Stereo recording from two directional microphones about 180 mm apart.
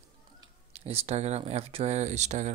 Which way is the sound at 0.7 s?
35° right (ahead or behind).